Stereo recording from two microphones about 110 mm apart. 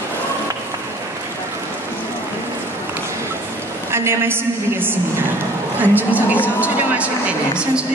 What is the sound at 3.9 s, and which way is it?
A woman's voice, 20° right (ahead or behind).